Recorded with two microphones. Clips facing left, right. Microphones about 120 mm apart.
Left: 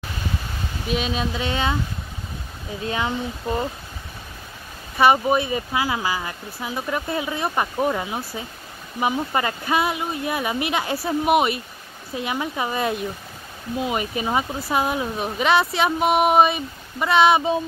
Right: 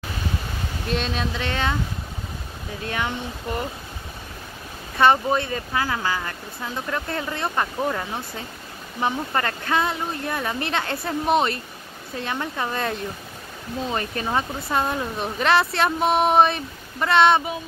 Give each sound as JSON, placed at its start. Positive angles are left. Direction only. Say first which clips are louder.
{"t": 0.8, "sound": "speech", "louder": "left 2 dB", "side_deg": 5}
{"t": 2.8, "sound": "speech", "louder": "left 3 dB", "side_deg": 25}
{"t": 4.9, "sound": "speech", "louder": "left 1 dB", "side_deg": 10}